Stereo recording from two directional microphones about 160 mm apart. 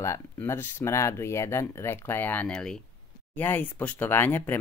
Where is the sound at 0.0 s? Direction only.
15° left (ahead or behind).